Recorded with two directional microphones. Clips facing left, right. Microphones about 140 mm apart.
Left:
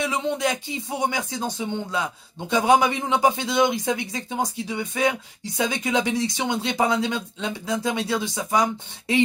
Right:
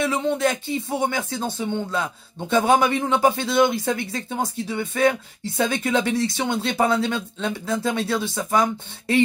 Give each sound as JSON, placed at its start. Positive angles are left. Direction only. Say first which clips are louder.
{"t": 0.0, "sound": "speech", "louder": "right 3 dB", "side_deg": 15}